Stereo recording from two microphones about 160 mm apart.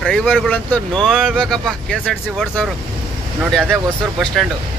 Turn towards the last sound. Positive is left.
turn(degrees=5)  # may be behind; listen again after turning